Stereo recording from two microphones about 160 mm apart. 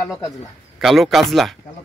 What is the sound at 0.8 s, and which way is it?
Speech, centre (ahead or behind).